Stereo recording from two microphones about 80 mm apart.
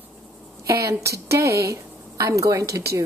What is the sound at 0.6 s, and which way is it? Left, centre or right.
A woman's voice, right.